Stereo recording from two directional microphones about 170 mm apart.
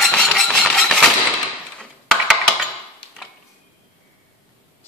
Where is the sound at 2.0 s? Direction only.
5° right (ahead or behind).